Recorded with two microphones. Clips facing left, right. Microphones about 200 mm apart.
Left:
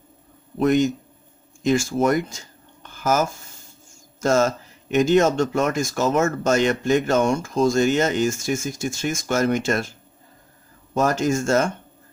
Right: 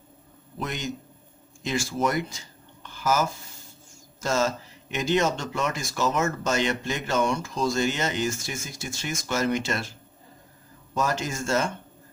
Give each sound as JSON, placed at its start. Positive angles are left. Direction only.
{"t": 0.6, "sound": "speech", "side_deg": 50}
{"t": 11.0, "sound": "speech", "side_deg": 45}